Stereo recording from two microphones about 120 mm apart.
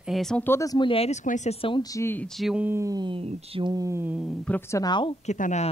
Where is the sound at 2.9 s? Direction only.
40° right (ahead or behind).